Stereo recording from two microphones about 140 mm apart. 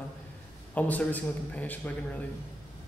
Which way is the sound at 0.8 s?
10° left (ahead or behind).